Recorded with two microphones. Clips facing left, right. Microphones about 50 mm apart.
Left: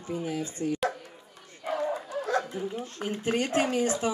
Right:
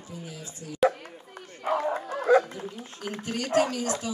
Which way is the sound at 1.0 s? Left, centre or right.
Right.